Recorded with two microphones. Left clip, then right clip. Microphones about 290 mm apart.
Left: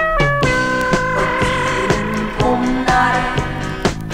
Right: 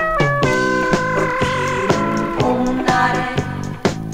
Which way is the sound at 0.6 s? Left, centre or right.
Left.